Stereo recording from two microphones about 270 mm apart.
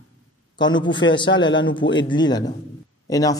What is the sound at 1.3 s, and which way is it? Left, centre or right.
Speech, left.